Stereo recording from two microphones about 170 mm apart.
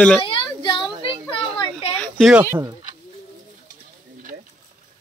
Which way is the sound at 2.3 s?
10° right (ahead or behind).